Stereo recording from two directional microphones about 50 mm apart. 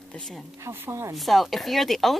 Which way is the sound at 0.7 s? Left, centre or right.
Right.